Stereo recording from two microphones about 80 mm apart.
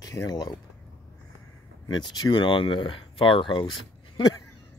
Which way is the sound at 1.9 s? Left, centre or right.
Left.